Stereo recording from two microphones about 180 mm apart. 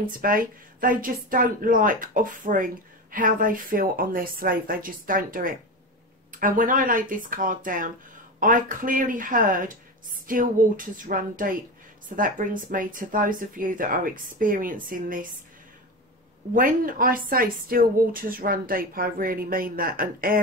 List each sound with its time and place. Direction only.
0.2 s a woman's voice: 50° right (ahead or behind)
16.5 s a woman's voice: 50° right (ahead or behind)